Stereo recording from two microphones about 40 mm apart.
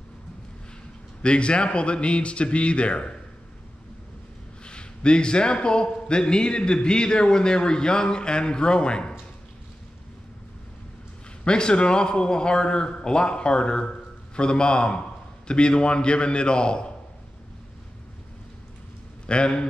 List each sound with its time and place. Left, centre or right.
1.2 s a man's voice: left
4.6 s a man's voice: left
11.4 s a man's voice: left
19.2 s a man's voice: left